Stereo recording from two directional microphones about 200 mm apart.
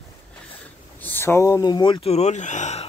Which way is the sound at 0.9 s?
10° left (ahead or behind).